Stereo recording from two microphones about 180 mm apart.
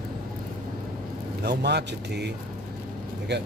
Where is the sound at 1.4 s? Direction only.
65° right (ahead or behind).